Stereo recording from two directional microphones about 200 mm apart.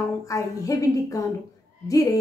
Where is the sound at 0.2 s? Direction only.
15° left (ahead or behind).